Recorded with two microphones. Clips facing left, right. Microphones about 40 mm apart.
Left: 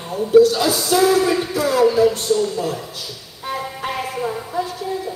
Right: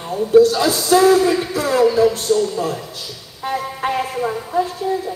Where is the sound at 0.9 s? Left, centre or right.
Right.